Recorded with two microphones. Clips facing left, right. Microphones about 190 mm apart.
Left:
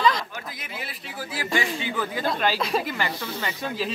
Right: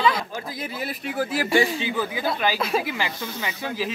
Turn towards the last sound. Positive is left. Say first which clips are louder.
# even
turn(degrees=-10)  # may be behind; listen again after turning